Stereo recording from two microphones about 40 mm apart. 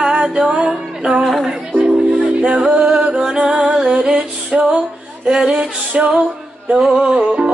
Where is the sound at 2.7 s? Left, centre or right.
Right.